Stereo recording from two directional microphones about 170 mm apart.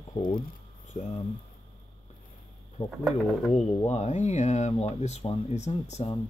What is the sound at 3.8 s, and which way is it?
Speech, 40° left (ahead or behind).